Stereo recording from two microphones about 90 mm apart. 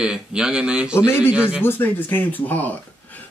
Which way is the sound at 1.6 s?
25° left (ahead or behind).